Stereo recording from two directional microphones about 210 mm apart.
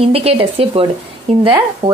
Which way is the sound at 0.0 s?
30° right (ahead or behind).